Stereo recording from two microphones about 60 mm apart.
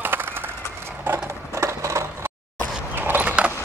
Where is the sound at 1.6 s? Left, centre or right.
Right.